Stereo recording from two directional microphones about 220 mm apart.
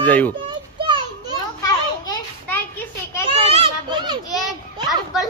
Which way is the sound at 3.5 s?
25° right (ahead or behind).